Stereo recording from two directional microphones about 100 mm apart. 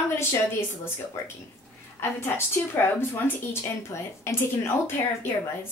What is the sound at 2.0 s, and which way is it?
A woman's voice, 25° left (ahead or behind).